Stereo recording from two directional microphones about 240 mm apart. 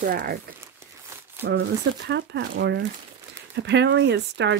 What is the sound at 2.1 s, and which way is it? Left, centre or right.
Speech, right.